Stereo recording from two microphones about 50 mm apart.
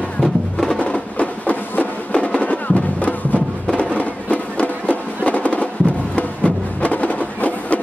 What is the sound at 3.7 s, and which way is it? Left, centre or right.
Music, centre.